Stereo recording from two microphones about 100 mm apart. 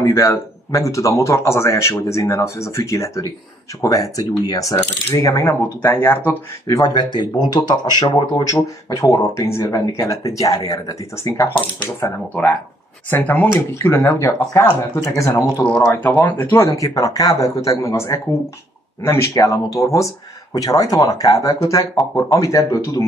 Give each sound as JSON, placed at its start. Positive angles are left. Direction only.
{"t": 0.0, "sound": "speech", "side_deg": 30}
{"t": 6.7, "sound": "speech", "side_deg": 40}
{"t": 8.5, "sound": "speech", "side_deg": 30}
{"t": 13.1, "sound": "speech", "side_deg": 20}
{"t": 13.8, "sound": "speech", "side_deg": 30}
{"t": 15.6, "sound": "speech", "side_deg": 10}
{"t": 15.9, "sound": "speech", "side_deg": 20}
{"t": 16.7, "sound": "speech", "side_deg": 35}